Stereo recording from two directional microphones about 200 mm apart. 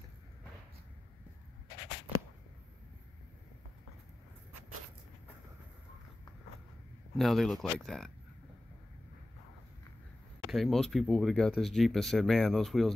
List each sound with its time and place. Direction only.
7.2 s speech: centre (ahead or behind)
10.5 s speech: centre (ahead or behind)